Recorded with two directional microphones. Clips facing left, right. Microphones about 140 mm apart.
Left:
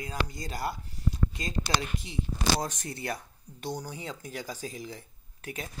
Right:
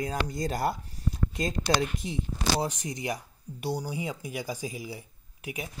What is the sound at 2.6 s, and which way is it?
Speech, 15° right (ahead or behind).